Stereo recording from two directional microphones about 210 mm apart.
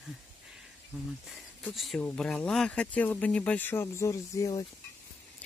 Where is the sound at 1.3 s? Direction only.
Centre (ahead or behind); by 4.6 s 15° left (ahead or behind).